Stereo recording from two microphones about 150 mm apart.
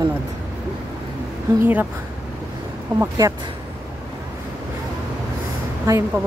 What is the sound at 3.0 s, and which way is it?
Speech, 20° right (ahead or behind).